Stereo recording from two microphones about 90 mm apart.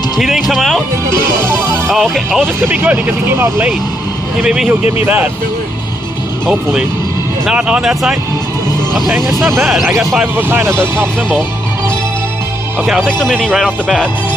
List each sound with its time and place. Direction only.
0.2 s speech: centre (ahead or behind)
1.5 s music: 30° right (ahead or behind)
1.9 s speech: centre (ahead or behind)
2.4 s speech: 20° right (ahead or behind)
4.4 s speech: 5° right (ahead or behind)
4.6 s speech: 20° right (ahead or behind)
7.4 s speech: 10° right (ahead or behind)
9.6 s speech: 5° right (ahead or behind)
10.2 s speech: 25° right (ahead or behind)
13.2 s speech: 5° left (ahead or behind)